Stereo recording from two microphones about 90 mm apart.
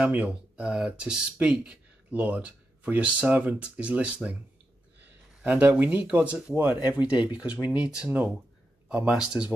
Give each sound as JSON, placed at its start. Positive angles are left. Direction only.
{"t": 0.0, "sound": "speech", "side_deg": -15}
{"t": 5.4, "sound": "speech", "side_deg": -15}